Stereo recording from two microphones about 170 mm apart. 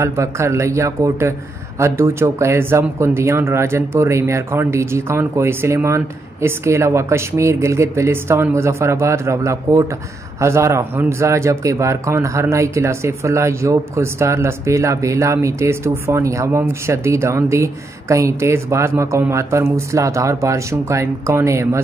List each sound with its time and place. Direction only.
0.0 s speech: 15° right (ahead or behind)